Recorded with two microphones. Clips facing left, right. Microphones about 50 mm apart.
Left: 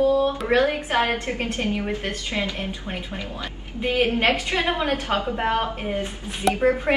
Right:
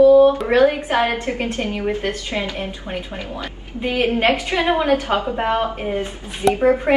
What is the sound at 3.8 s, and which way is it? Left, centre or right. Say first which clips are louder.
A woman's voice: right 2 dB; right.